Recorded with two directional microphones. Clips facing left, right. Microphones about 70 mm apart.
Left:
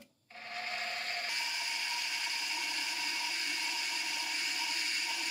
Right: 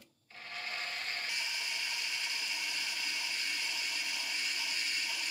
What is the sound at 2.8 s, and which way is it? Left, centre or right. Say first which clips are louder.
Blender: left 1 dB; centre.